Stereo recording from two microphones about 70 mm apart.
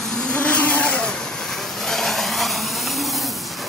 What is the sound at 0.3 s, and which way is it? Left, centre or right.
Vehicle, left.